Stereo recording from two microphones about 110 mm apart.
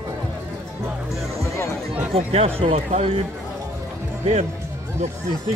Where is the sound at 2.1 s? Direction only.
65° right (ahead or behind).